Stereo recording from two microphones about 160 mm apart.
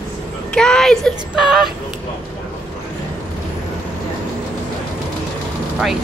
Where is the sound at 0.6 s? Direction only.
5° left (ahead or behind).